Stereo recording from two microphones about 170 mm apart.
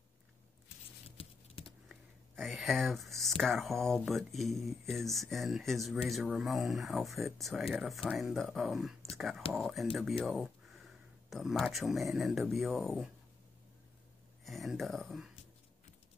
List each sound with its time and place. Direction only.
1.0 s patter: 35° left (ahead or behind)
1.9 s speech: centre (ahead or behind)
9.1 s whispering: centre (ahead or behind)
9.5 s speech: centre (ahead or behind)
14.4 s speech: centre (ahead or behind)